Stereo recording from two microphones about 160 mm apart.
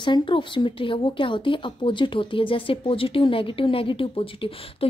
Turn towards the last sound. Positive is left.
turn(degrees=35)  # may be behind; listen again after turning